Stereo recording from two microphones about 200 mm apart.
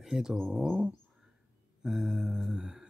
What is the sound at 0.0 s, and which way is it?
Speech, centre (ahead or behind).